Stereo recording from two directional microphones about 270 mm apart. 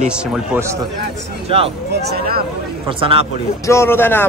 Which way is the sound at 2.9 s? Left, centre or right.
Centre.